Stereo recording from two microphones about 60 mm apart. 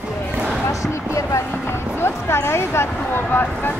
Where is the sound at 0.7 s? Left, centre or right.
Left.